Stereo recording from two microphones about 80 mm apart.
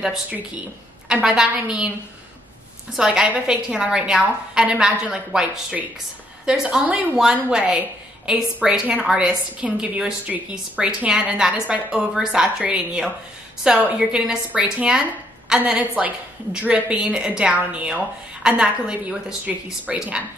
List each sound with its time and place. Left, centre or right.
1.0 s a woman's voice: centre
3.0 s a woman's voice: centre